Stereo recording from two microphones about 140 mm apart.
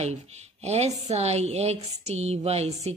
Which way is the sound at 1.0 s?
50° right (ahead or behind).